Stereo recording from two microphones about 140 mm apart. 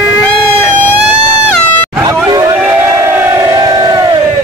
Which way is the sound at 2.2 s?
25° right (ahead or behind).